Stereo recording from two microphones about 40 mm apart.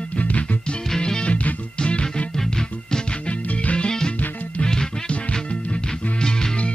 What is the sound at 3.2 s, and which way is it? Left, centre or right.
Music, left.